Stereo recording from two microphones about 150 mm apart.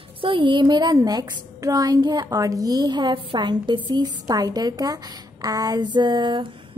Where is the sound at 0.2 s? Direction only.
35° right (ahead or behind).